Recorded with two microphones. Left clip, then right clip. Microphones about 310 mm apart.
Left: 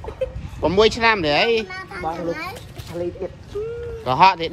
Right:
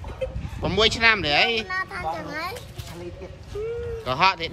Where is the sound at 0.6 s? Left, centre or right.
Centre.